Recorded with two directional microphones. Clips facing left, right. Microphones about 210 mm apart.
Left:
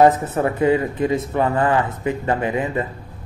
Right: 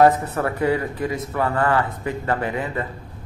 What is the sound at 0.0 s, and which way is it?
Speech, 20° left (ahead or behind).